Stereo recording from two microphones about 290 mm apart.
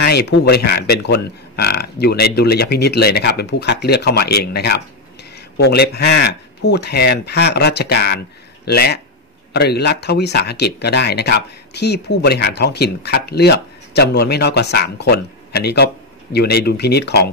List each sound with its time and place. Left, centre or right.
0.0 s speech: left